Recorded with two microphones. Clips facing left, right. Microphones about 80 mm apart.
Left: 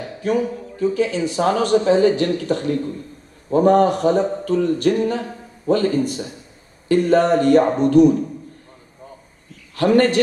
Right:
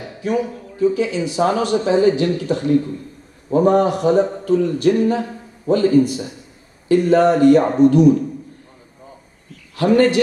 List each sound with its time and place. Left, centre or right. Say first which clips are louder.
0.2 s speech: even; left
9.8 s speech: right 1 dB; left